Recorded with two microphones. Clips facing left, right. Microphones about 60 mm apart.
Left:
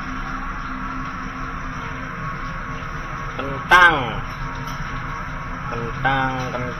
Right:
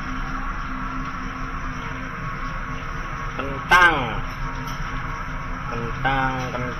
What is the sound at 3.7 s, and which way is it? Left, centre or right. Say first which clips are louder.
Speech: left 3 dB; left.